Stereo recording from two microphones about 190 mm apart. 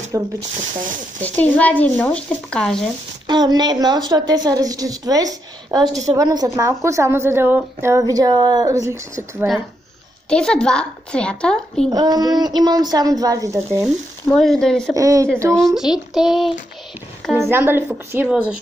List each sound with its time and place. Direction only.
0.1 s a woman's voice: 15° right (ahead or behind)
1.2 s speech: 10° left (ahead or behind)
3.3 s a woman's voice: 20° right (ahead or behind)
10.3 s a woman's voice: 5° left (ahead or behind)
11.9 s a woman's voice: 20° right (ahead or behind)
14.3 s a woman's voice: 5° left (ahead or behind)
15.0 s a woman's voice: 15° right (ahead or behind)
15.5 s a woman's voice: centre (ahead or behind)
17.5 s a woman's voice: 10° right (ahead or behind)